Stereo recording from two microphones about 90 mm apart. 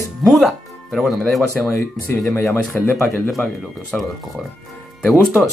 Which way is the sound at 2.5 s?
25° left (ahead or behind).